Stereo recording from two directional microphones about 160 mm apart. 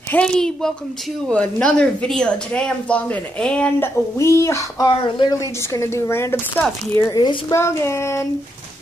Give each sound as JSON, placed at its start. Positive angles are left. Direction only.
{"t": 0.1, "sound": "a woman's voice", "side_deg": 5}